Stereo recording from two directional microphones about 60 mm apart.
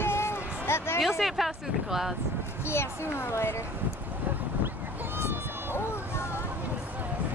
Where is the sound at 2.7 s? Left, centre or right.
Left.